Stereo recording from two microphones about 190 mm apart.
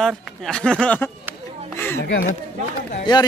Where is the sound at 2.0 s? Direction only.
60° left (ahead or behind).